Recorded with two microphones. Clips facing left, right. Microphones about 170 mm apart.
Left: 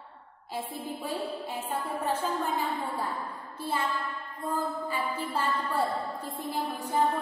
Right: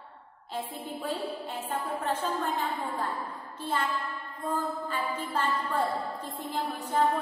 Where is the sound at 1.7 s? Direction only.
10° left (ahead or behind).